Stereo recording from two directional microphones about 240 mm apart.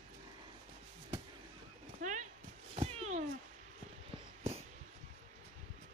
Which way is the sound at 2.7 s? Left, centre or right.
Right.